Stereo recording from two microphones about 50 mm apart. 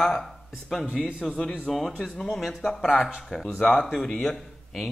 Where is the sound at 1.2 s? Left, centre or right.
Centre.